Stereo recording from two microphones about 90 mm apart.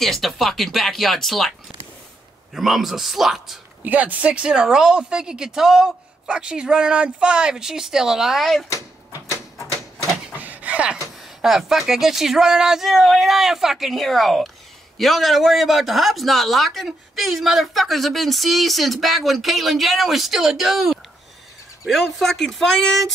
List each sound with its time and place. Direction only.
0.0 s a man's voice: centre (ahead or behind)
2.5 s a man's voice: 5° right (ahead or behind)
3.8 s speech: 15° right (ahead or behind); by 8.6 s centre (ahead or behind)
10.3 s a sound: 20° right (ahead or behind)
11.4 s a man's voice: 5° right (ahead or behind)